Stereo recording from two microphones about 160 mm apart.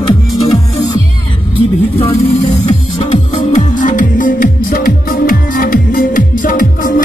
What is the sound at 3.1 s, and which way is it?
Music, 50° left (ahead or behind).